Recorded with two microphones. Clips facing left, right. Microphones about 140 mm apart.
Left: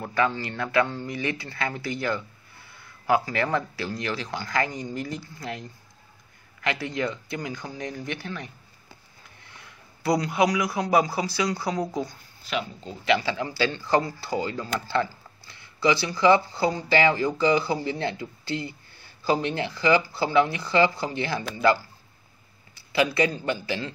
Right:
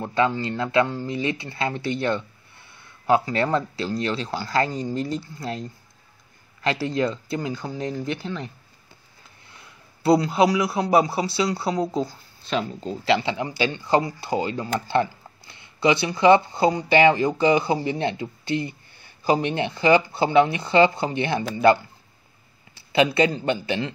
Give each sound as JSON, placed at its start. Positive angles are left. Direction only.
{"t": 0.0, "sound": "speech", "side_deg": -25}
{"t": 10.0, "sound": "speech", "side_deg": -30}
{"t": 22.9, "sound": "speech", "side_deg": -25}